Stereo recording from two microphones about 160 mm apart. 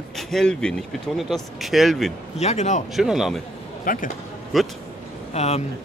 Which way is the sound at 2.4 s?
45° left (ahead or behind).